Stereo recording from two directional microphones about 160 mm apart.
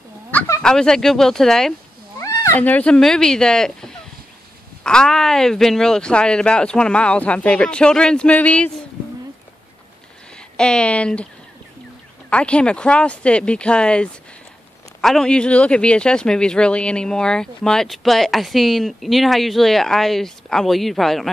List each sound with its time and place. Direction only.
0.3 s a man's voice: 10° left (ahead or behind)
2.1 s a man's voice: 15° left (ahead or behind)
10.6 s speech: 5° left (ahead or behind)
12.3 s a man's voice: 5° left (ahead or behind)